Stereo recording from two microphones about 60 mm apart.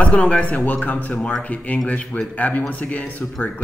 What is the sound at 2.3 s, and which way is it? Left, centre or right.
Speech, left.